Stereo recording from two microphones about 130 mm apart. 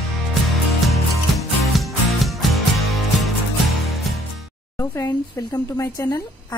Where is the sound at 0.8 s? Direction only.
Centre (ahead or behind).